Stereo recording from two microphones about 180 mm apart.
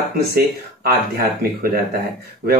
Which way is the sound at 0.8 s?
55° right (ahead or behind).